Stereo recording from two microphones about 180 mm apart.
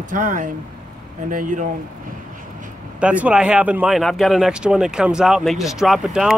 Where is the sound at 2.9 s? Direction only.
5° right (ahead or behind).